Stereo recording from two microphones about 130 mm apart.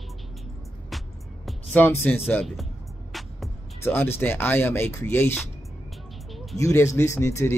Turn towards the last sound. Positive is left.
turn(degrees=20)  # may be behind; listen again after turning